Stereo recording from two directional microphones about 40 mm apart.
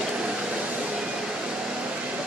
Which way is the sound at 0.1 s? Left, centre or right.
Right.